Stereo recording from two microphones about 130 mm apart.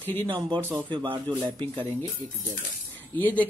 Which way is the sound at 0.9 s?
40° right (ahead or behind).